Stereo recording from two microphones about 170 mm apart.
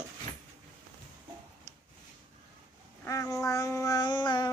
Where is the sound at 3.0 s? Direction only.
20° left (ahead or behind).